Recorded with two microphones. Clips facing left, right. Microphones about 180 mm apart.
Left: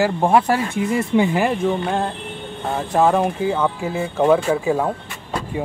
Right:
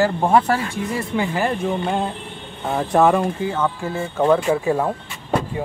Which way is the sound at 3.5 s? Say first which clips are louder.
Left 1 dB; 10° left (ahead or behind).